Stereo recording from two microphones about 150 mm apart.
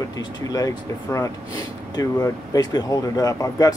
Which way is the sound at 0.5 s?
25° left (ahead or behind).